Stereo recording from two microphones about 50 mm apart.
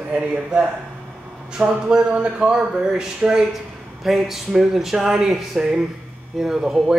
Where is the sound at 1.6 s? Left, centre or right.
Right.